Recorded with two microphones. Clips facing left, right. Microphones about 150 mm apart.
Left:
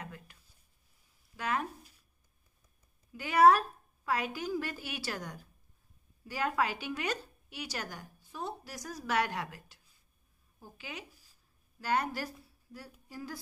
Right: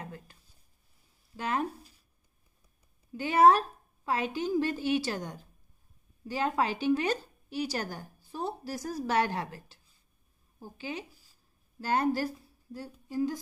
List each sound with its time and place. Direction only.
0.0 s a sound: 30° right (ahead or behind)
1.3 s speech: 30° right (ahead or behind)
3.1 s a woman's voice: 30° right (ahead or behind)